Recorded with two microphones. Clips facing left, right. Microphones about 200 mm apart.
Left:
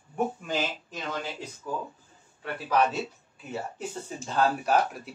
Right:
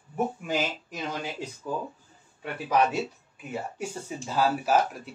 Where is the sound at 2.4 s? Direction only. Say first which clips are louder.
Right 1 dB; 15° right (ahead or behind).